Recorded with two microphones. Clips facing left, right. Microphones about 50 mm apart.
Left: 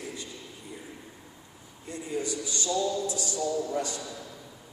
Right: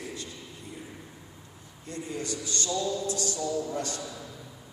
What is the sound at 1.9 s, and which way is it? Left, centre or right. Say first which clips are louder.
A man's voice: left 2 dB; centre.